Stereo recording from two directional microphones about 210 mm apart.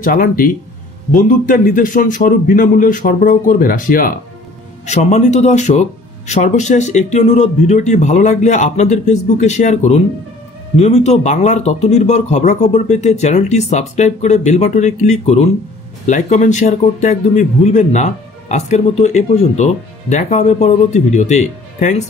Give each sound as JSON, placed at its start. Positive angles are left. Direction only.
{"t": 0.0, "sound": "speech", "side_deg": 40}